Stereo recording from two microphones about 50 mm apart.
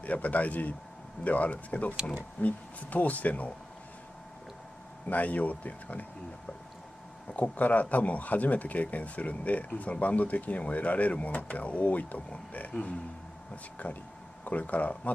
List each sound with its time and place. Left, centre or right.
0.0 s speech: left
5.1 s speech: left
7.3 s speech: left
13.8 s speech: left